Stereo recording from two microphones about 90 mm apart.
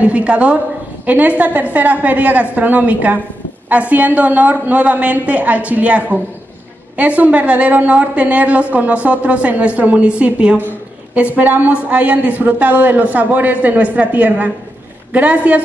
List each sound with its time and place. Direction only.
0.0 s a woman's voice: 15° right (ahead or behind)